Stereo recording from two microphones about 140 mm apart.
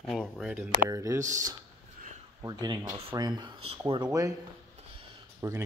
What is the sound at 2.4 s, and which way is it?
Speech, 30° right (ahead or behind).